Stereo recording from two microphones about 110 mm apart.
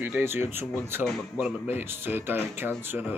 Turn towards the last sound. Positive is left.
turn(degrees=-20)  # may be behind; listen again after turning